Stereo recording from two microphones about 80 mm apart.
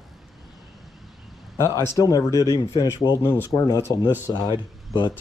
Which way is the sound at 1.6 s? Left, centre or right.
Left.